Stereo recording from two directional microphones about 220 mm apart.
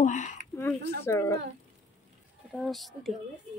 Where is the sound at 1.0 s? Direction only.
10° left (ahead or behind).